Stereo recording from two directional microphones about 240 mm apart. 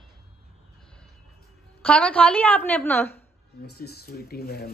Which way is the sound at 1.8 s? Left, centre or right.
Centre.